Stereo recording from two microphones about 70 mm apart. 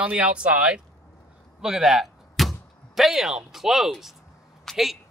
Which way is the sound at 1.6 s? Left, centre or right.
Centre.